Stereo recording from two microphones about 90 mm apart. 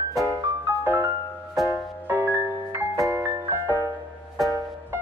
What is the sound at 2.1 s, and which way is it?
Music, 25° right (ahead or behind).